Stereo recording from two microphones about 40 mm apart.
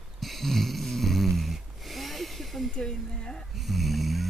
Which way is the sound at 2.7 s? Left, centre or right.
Centre.